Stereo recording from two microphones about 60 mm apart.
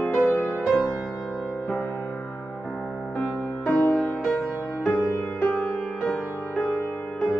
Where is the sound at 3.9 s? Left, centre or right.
Centre.